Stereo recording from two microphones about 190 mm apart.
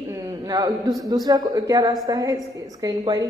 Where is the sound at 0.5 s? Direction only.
20° right (ahead or behind).